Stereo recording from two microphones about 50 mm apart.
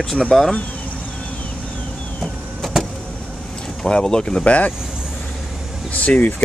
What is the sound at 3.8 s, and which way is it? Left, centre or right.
Speech, centre.